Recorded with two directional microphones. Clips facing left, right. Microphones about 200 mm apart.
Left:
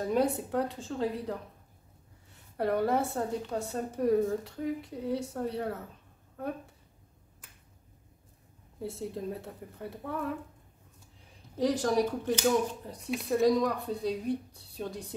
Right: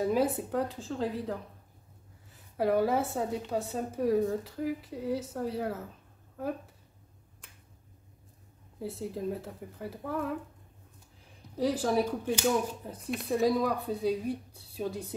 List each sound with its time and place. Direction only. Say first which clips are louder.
0.0 s a woman's voice: right 1 dB; 5° right (ahead or behind)
8.7 s speech: even; centre (ahead or behind)
11.5 s speech: left 1 dB; 5° right (ahead or behind)